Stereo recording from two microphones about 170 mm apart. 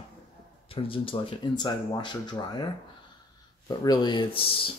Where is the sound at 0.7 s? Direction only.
30° left (ahead or behind).